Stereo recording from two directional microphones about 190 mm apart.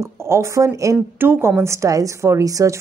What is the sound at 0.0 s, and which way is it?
A woman's voice, 15° right (ahead or behind).